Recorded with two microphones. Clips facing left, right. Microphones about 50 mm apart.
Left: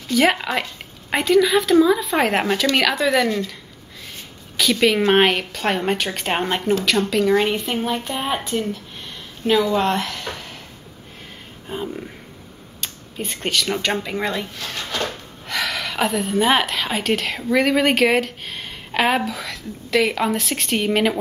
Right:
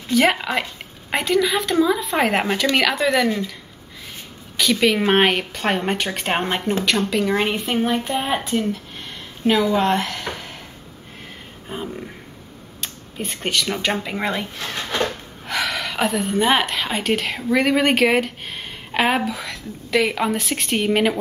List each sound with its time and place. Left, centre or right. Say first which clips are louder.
0.1 s speech: even; centre
4.6 s speech: left 1 dB; centre
10.1 s a sound: right 1 dB; centre
11.7 s speech: left 2 dB; centre
14.3 s speech: right 1 dB; right
15.0 s speech: right 2 dB; centre